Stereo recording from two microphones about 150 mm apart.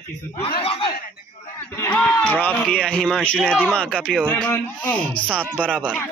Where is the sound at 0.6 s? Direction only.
40° left (ahead or behind).